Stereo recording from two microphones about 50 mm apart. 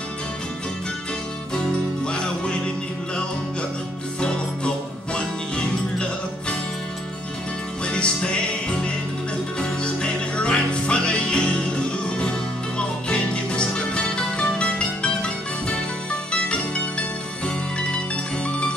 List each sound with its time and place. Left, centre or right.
1.5 s music: centre
4.2 s music: centre
7.8 s music: centre
12.7 s music: left
17.7 s music: centre